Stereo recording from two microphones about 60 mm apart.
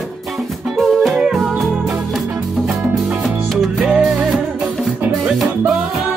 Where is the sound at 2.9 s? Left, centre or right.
Centre.